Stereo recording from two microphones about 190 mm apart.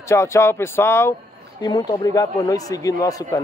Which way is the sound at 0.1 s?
15° left (ahead or behind).